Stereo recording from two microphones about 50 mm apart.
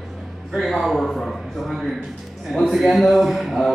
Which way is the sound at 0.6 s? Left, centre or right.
Centre.